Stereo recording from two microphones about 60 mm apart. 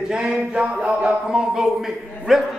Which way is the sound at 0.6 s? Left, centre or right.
Right.